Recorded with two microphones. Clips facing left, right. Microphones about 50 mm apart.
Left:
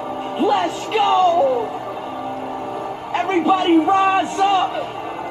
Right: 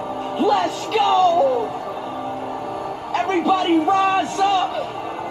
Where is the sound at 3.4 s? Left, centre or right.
Centre.